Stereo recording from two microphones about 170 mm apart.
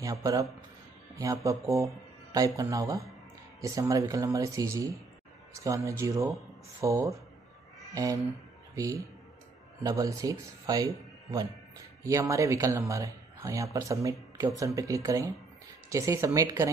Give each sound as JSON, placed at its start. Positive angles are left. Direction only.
{"t": 0.0, "sound": "speech", "side_deg": -20}